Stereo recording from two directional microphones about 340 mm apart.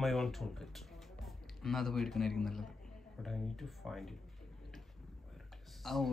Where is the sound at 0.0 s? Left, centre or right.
Centre.